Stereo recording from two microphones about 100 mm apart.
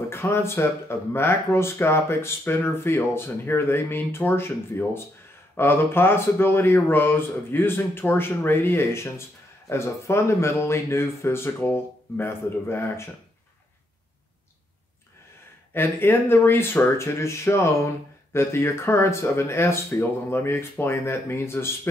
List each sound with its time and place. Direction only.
0.1 s speech: 25° left (ahead or behind)
15.7 s speech: 25° left (ahead or behind)